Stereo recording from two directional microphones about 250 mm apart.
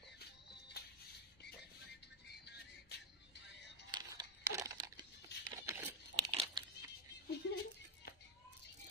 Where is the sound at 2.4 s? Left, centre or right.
Left.